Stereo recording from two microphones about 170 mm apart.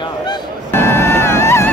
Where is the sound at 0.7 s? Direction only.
15° left (ahead or behind).